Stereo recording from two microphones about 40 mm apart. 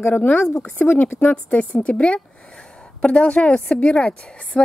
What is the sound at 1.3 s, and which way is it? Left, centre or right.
A woman's voice, left.